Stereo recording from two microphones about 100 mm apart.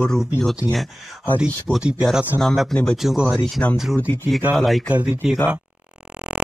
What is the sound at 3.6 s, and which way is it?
Speech, 20° left (ahead or behind).